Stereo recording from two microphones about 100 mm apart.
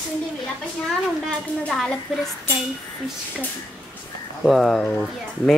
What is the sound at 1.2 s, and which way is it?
Speech, 5° left (ahead or behind).